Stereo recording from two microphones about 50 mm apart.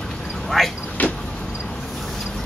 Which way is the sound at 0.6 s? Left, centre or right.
Centre.